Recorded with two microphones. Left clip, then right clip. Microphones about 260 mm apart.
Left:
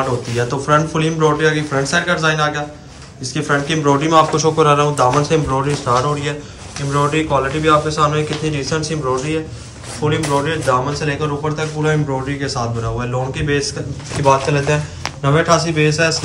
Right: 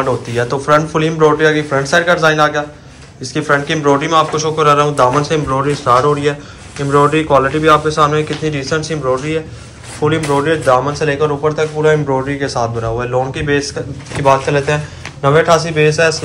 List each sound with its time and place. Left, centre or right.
0.4 s a man's voice: centre